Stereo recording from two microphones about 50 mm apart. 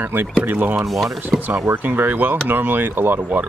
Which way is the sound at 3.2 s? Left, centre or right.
Right.